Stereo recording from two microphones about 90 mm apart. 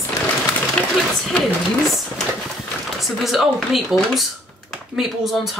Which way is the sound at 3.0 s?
Centre (ahead or behind).